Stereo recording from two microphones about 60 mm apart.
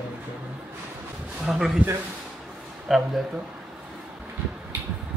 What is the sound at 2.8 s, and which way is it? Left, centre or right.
Speech, centre.